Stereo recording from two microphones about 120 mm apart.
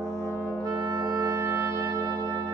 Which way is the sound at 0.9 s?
30° right (ahead or behind).